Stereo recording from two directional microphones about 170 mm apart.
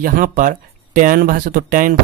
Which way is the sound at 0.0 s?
55° right (ahead or behind).